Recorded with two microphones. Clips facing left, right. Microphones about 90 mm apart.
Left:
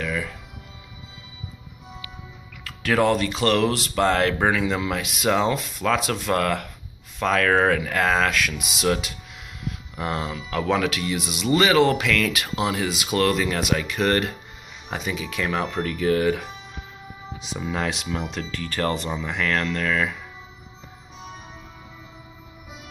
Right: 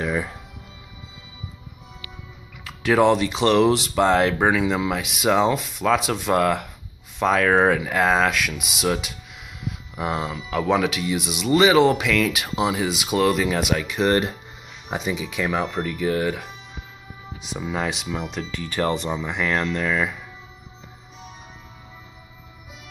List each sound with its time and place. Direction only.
0.0 s music: 25° right (ahead or behind)
2.6 s speech: 15° right (ahead or behind)
17.5 s speech: 5° right (ahead or behind)